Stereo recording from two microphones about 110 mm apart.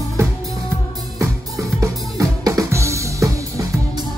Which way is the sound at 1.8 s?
30° right (ahead or behind).